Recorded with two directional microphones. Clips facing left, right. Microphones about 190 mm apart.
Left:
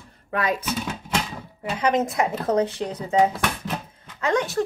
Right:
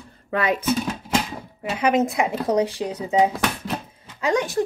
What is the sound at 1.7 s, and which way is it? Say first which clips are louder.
Speech: right 2 dB; 10° right (ahead or behind).